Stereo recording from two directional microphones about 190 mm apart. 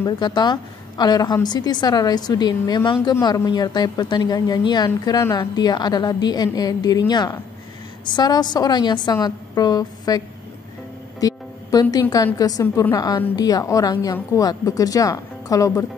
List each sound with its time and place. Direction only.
0.0 s a woman's voice: 20° left (ahead or behind)
11.1 s music: 20° left (ahead or behind)
12.4 s a woman's voice: 20° left (ahead or behind)